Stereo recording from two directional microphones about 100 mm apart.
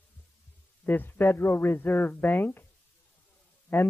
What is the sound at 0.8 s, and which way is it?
A man's voice, 20° left (ahead or behind).